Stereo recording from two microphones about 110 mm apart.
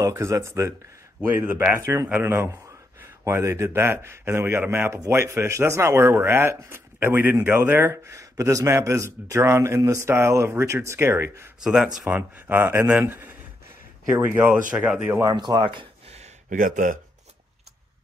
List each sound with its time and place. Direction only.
0.0 s speech: 25° right (ahead or behind)
1.8 s speech: 30° right (ahead or behind)
2.0 s speech: 20° right (ahead or behind)
11.6 s speech: 5° right (ahead or behind)
12.2 s speech: 20° right (ahead or behind)
15.2 s speech: 40° right (ahead or behind)